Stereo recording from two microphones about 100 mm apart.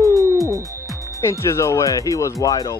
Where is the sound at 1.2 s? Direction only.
30° left (ahead or behind).